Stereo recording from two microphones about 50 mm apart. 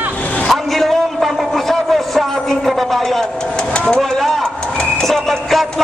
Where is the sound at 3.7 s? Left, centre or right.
Left.